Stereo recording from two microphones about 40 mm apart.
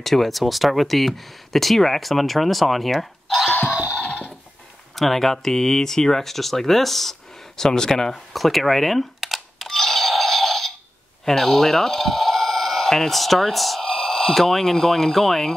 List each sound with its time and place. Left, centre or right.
0.0 s speech: centre
4.1 s a sound: left
4.9 s speech: centre
8.3 s camera: centre
11.2 s speech: centre